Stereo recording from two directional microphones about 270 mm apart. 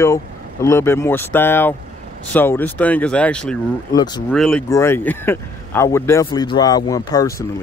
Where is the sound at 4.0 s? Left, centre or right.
Centre.